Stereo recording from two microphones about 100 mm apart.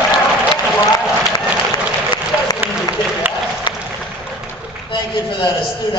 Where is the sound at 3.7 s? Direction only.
45° left (ahead or behind).